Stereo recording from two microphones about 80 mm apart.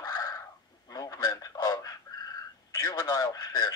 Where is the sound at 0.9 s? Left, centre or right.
Left.